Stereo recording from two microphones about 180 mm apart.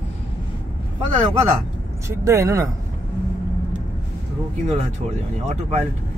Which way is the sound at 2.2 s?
20° right (ahead or behind).